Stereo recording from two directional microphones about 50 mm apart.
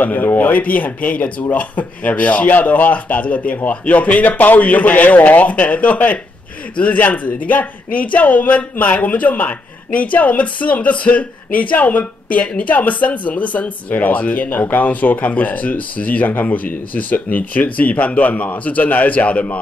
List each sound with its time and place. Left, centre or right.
0.0 s speech: left